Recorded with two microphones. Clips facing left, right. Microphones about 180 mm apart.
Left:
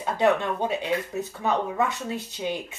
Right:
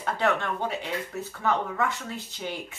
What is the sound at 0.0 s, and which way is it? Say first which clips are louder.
Speech: left 4 dB; 15° left (ahead or behind).